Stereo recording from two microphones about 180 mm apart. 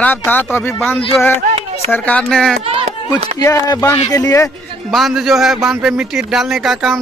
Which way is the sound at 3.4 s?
20° left (ahead or behind).